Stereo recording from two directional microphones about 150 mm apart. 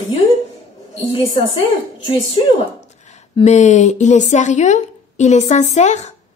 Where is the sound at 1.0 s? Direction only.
45° left (ahead or behind).